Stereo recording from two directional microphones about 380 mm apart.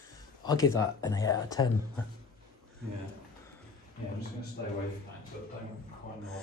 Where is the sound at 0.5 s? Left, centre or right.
Centre.